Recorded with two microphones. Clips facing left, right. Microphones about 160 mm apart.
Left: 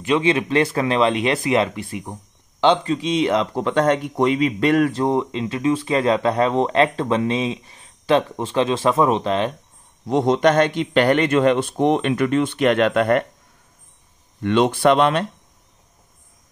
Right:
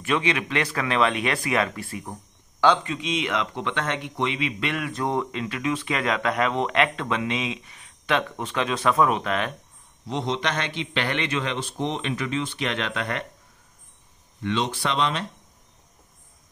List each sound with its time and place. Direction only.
0.0 s speech: 25° left (ahead or behind)
5.0 s speech: 25° left (ahead or behind)
10.0 s a man's voice: 50° left (ahead or behind)
14.4 s speech: 55° left (ahead or behind)